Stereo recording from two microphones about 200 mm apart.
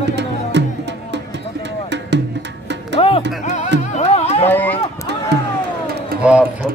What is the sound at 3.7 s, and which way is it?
Music, 35° left (ahead or behind).